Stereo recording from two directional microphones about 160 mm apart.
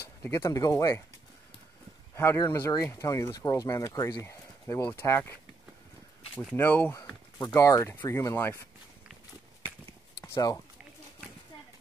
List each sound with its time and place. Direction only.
0.2 s speech: 15° left (ahead or behind)
2.1 s speech: 20° left (ahead or behind)
6.5 s speech: 10° left (ahead or behind)
10.2 s speech: 20° left (ahead or behind)